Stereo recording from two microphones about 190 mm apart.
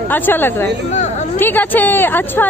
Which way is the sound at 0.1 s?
10° left (ahead or behind).